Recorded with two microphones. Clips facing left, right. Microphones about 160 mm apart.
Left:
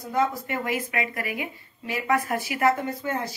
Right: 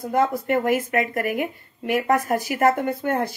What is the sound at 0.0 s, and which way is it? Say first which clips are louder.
Speech: right 4 dB; 55° right (ahead or behind).